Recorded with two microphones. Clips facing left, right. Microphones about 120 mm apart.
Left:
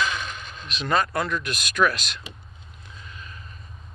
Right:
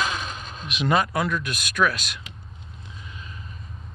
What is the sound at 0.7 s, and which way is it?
Speech, 15° right (ahead or behind).